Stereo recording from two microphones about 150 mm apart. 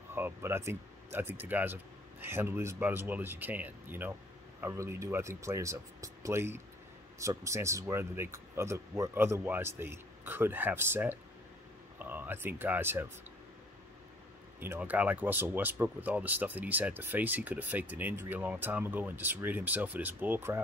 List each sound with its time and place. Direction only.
0.1 s speech: 15° right (ahead or behind)
14.6 s speech: 15° right (ahead or behind)